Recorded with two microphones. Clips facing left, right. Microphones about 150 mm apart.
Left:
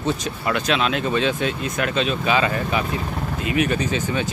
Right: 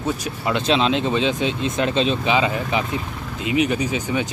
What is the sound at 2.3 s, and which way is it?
Speech, 15° right (ahead or behind).